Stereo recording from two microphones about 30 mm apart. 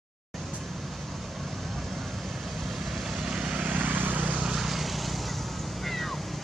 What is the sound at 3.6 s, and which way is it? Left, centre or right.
Vehicle, right.